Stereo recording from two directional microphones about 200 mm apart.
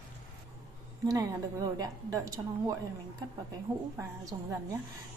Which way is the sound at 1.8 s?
20° right (ahead or behind).